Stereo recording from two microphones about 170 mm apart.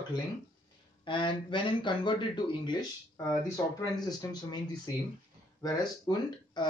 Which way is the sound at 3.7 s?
25° left (ahead or behind).